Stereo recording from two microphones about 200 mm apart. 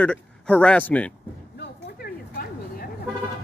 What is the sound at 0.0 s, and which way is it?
Speech, 5° left (ahead or behind).